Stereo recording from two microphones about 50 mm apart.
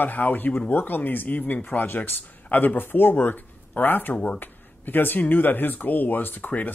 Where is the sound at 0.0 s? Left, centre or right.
Left.